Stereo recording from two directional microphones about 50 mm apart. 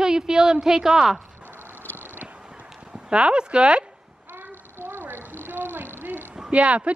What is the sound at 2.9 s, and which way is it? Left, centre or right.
Speech, right.